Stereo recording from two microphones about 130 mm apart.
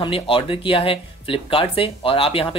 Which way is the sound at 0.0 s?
45° left (ahead or behind).